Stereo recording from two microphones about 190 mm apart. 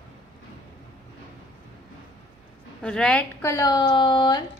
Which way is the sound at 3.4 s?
15° left (ahead or behind).